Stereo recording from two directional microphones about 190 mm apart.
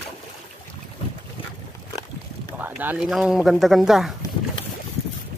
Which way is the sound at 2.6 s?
10° right (ahead or behind).